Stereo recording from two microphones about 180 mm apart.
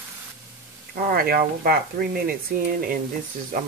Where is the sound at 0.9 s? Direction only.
50° right (ahead or behind).